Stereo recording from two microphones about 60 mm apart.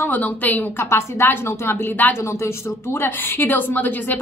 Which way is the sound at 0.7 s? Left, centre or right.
Left.